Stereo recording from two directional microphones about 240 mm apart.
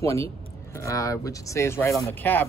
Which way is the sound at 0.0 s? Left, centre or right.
Centre.